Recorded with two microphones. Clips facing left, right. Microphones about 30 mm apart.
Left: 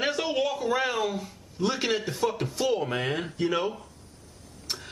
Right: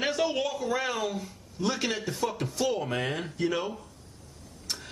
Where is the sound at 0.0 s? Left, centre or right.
Centre.